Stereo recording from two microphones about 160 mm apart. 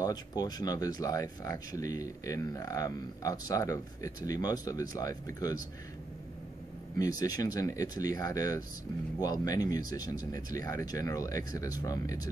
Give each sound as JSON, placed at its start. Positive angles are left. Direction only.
{"t": 0.0, "sound": "speech", "side_deg": 25}
{"t": 7.0, "sound": "speech", "side_deg": 25}